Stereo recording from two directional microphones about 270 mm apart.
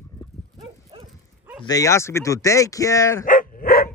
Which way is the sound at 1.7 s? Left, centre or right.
Centre.